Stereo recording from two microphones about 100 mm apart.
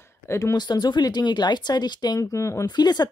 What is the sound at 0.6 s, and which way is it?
Speech, 45° left (ahead or behind).